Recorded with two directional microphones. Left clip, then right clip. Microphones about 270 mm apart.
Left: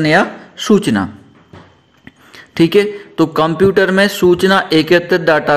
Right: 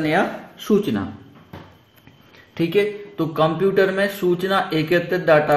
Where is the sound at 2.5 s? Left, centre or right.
Left.